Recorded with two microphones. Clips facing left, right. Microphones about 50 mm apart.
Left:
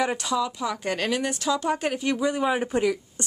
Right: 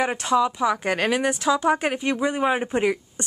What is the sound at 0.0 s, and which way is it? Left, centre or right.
A woman's voice, right.